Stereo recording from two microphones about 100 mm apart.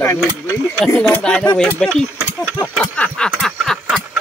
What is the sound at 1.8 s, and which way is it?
Speech, 5° left (ahead or behind).